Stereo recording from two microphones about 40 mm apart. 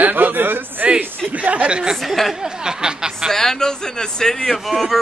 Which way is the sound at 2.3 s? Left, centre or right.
Centre.